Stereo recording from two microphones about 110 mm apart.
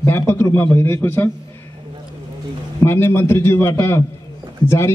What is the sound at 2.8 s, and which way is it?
Speech, 25° left (ahead or behind).